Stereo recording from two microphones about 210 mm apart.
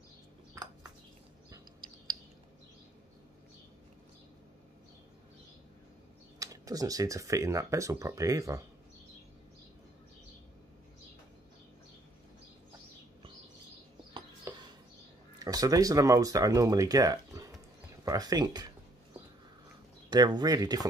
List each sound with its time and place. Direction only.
6.4 s speech: 15° right (ahead or behind)
14.1 s a sound: 20° right (ahead or behind)
15.3 s speech: 15° right (ahead or behind)
20.1 s speech: 20° right (ahead or behind)